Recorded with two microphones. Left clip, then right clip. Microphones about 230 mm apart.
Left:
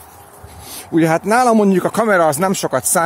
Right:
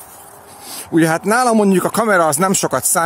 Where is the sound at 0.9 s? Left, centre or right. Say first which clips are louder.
Left 1 dB; centre.